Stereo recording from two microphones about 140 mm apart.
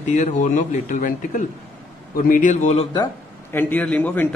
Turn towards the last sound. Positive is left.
turn(degrees=10)  # may be behind; listen again after turning